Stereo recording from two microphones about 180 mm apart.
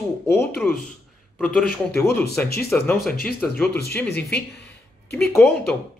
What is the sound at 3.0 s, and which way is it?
Speech, 55° left (ahead or behind).